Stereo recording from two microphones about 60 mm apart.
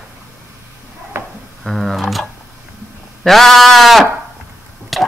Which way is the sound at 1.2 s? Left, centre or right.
Right.